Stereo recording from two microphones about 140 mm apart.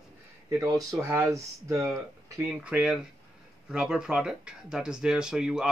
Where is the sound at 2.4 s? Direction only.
10° right (ahead or behind).